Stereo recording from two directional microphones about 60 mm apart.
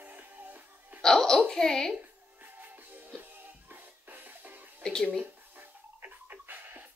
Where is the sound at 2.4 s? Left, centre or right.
Right.